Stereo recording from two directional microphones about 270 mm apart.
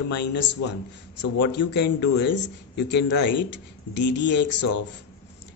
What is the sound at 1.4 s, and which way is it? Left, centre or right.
Speech, left.